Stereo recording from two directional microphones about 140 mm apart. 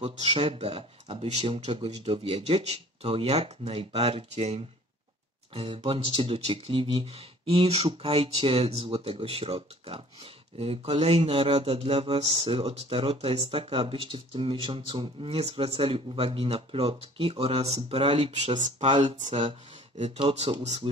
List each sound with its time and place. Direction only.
0.0 s speech: 45° right (ahead or behind)